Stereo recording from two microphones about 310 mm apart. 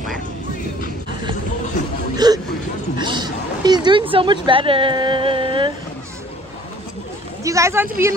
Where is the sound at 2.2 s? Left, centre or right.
Centre.